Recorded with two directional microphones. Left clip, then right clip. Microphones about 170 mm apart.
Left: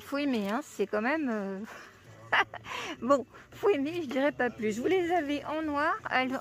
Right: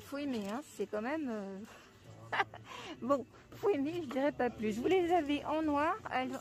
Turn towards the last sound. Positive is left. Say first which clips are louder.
# left 6 dB
turn(degrees=20)  # may be behind; listen again after turning